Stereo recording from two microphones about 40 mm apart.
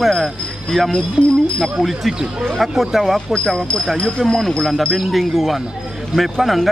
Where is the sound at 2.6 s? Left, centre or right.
Centre.